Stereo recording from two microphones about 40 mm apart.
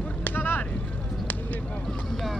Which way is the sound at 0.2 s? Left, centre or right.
Left.